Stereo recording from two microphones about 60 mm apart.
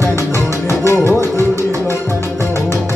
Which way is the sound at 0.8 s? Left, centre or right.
Left.